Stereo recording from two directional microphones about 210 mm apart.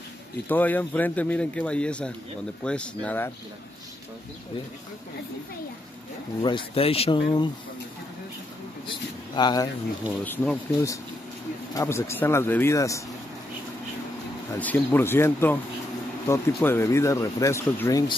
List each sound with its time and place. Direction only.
0.5 s speech: 10° left (ahead or behind)
6.4 s speech: 25° left (ahead or behind)
8.8 s speech: 20° left (ahead or behind)
10.2 s speech: 5° left (ahead or behind)
11.7 s speech: 15° left (ahead or behind)
14.6 s speech: 10° left (ahead or behind)